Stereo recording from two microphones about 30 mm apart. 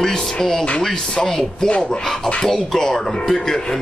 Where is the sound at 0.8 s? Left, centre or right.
Centre.